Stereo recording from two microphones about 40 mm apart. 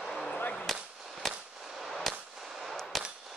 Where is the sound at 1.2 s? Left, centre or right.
Centre.